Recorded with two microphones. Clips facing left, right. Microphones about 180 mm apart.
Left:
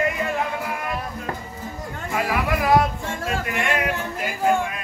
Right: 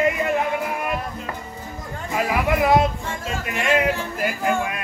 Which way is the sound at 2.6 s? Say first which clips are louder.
Right 1 dB; 20° right (ahead or behind).